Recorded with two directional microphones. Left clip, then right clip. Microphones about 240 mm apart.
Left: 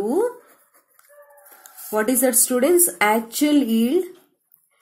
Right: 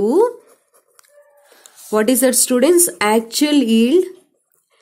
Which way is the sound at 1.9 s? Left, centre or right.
Right.